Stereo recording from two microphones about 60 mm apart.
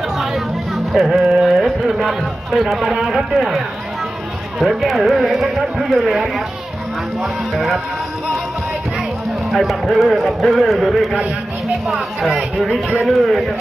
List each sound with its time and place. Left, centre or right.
0.9 s speech: centre
7.5 s speech: centre
9.5 s speech: centre